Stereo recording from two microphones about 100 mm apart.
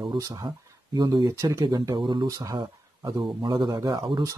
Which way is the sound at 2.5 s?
50° right (ahead or behind).